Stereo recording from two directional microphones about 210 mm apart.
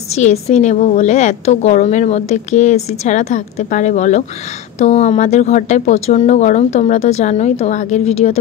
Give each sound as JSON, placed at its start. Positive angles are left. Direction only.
{"t": 0.1, "sound": "a woman's voice", "side_deg": 30}